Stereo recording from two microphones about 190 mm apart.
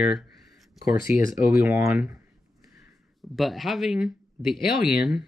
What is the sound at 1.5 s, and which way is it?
Speech, 5° right (ahead or behind).